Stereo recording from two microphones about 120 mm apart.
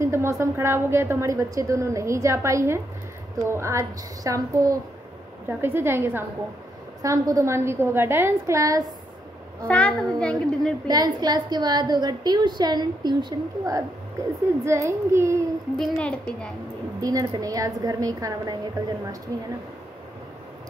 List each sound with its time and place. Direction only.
0.0 s a woman's voice: 20° right (ahead or behind)
5.5 s a woman's voice: 20° right (ahead or behind)
9.7 s a child's voice: 10° left (ahead or behind)
10.9 s a woman's voice: 35° right (ahead or behind)
15.8 s a child's voice: 10° left (ahead or behind)
17.0 s a woman's voice: 30° right (ahead or behind)